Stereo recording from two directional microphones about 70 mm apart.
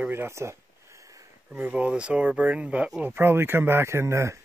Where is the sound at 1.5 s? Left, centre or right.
Right.